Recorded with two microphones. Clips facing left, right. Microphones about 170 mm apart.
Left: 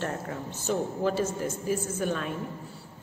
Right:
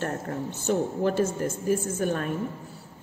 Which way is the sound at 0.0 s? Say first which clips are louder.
Right 3 dB; 50° right (ahead or behind).